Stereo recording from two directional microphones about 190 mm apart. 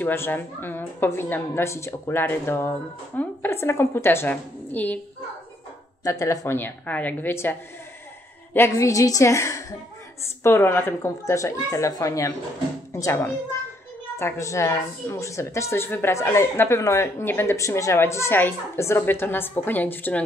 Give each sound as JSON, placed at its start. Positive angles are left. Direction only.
{"t": 0.0, "sound": "a woman's voice", "side_deg": 10}
{"t": 6.0, "sound": "a woman's voice", "side_deg": 15}
{"t": 8.5, "sound": "a woman's voice", "side_deg": 15}